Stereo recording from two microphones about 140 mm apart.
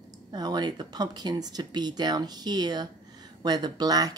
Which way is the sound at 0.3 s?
30° right (ahead or behind).